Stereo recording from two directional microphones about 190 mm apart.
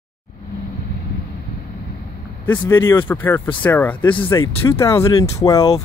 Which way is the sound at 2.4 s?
10° left (ahead or behind).